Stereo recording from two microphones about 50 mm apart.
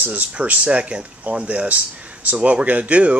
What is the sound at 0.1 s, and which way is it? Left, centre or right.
Speech, right.